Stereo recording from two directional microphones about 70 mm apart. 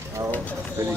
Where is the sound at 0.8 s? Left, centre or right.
Right.